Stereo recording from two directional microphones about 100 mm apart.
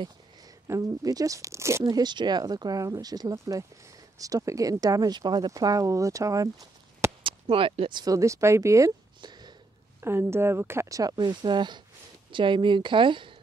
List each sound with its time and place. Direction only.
0.7 s speech: 35° right (ahead or behind)
1.9 s speech: 45° right (ahead or behind)
7.2 s speech: 60° right (ahead or behind)
8.0 s speech: 35° right (ahead or behind)
9.2 s a sound: 45° right (ahead or behind)
9.9 s speech: 25° right (ahead or behind); by 13.4 s 55° right (ahead or behind)